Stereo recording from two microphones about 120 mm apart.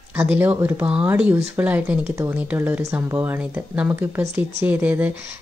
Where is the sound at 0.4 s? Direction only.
20° right (ahead or behind).